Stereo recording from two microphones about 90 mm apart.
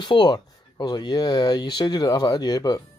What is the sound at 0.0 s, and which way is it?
Speech, 55° left (ahead or behind).